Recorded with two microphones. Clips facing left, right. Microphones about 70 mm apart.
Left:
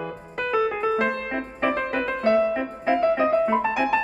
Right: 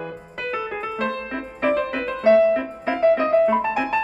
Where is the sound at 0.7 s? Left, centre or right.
Centre.